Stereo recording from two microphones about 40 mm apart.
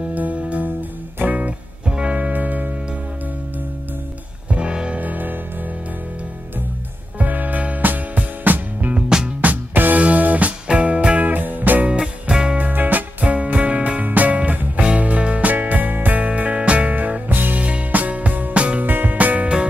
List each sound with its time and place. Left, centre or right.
0.1 s music: right
1.9 s music: right
2.1 s music: right
4.5 s music: right
4.9 s music: right
7.2 s music: right
11.2 s music: right
12.0 s music: centre
12.5 s music: right
15.5 s music: right
16.2 s music: right
16.9 s music: right
17.6 s music: right
18.9 s music: right